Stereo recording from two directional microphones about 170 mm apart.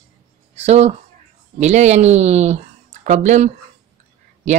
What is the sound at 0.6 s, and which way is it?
Speech, 40° right (ahead or behind).